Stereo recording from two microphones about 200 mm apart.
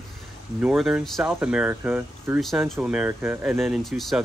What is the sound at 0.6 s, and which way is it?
Speech, 5° right (ahead or behind).